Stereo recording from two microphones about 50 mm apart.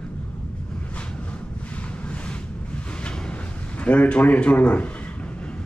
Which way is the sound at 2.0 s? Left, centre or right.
Left.